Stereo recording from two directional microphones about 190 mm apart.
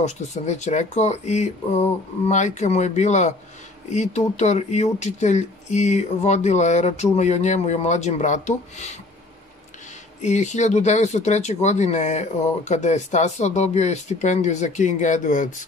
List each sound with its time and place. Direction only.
0.0 s speech: 35° left (ahead or behind)
10.2 s speech: 35° left (ahead or behind)